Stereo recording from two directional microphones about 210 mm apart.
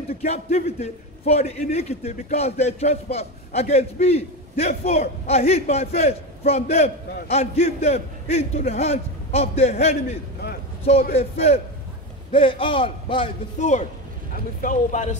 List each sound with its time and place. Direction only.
0.1 s a man's voice: 30° left (ahead or behind)
11.1 s a man's voice: 30° left (ahead or behind)